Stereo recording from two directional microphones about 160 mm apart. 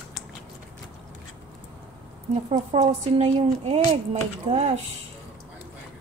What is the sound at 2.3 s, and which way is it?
A woman's voice, 40° right (ahead or behind).